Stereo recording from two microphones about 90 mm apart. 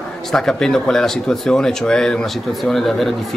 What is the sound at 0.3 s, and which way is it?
Speech, 5° left (ahead or behind).